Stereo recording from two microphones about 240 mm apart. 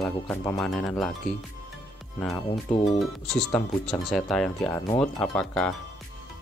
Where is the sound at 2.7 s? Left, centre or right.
Left.